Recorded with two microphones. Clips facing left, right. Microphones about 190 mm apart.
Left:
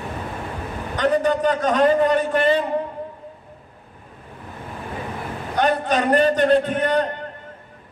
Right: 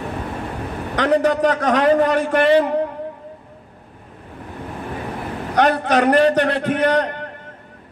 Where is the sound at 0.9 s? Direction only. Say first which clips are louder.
Right 2 dB; 75° right (ahead or behind).